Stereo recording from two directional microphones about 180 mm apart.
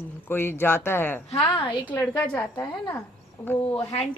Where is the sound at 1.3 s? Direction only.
25° left (ahead or behind).